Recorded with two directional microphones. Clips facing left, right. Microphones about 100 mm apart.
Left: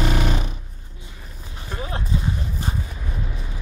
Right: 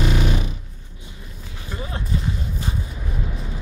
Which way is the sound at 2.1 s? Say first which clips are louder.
Even; 20° left (ahead or behind).